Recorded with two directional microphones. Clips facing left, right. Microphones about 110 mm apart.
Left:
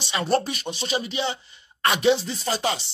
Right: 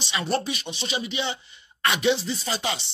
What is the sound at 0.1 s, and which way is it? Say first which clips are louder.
A man's voice: left 3 dB; 40° left (ahead or behind).